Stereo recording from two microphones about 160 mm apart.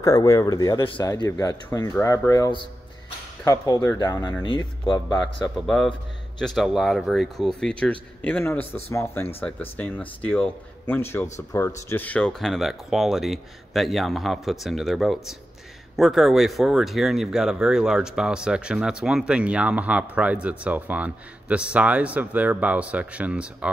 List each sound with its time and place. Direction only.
0.0 s speech: 20° left (ahead or behind)
5.1 s speech: 5° left (ahead or behind)